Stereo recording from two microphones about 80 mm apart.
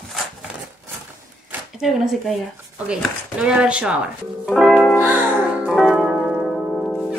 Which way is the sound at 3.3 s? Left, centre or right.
Centre.